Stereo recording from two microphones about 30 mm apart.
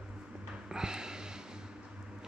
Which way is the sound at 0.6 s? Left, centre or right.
Right.